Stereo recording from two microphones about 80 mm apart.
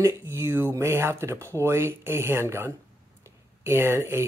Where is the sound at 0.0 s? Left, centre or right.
Right.